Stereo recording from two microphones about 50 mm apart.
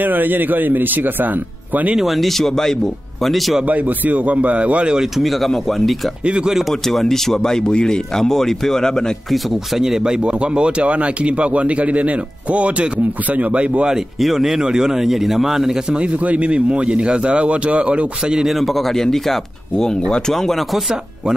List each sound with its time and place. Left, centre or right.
0.0 s speech: right
2.0 s speech: centre
3.6 s a man's voice: right
4.9 s speech: centre
6.2 s speech: centre
6.7 s speech: centre
9.3 s a man's voice: centre; by 13.8 s right
13.8 s speech: centre
16.0 s a man's voice: right
18.4 s speech: centre